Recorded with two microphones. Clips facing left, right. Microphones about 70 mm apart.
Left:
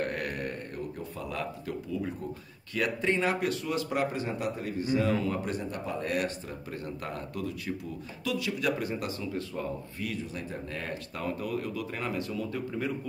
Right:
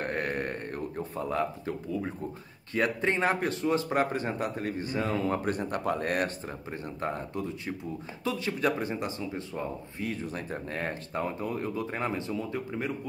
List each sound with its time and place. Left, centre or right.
0.0 s a sound: right
2.7 s speech: right
6.7 s speech: right